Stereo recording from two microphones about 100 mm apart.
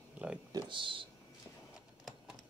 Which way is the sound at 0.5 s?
55° right (ahead or behind).